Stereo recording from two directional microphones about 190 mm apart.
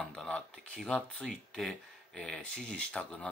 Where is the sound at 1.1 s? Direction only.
Centre (ahead or behind).